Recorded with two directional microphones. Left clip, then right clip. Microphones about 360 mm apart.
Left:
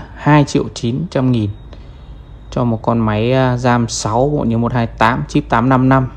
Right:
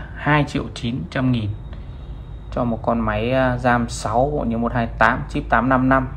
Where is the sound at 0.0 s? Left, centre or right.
Centre.